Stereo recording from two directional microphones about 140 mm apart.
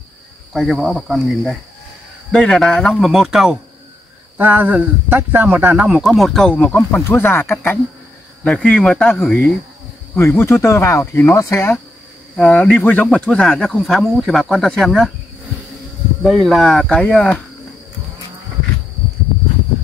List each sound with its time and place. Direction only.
0.5 s speech: centre (ahead or behind)
6.0 s speech: centre (ahead or behind)
10.1 s speech: 15° left (ahead or behind)
12.4 s speech: 10° left (ahead or behind)
16.4 s speech: centre (ahead or behind)